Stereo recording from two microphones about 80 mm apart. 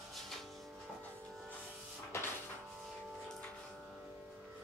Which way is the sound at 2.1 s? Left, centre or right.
Left.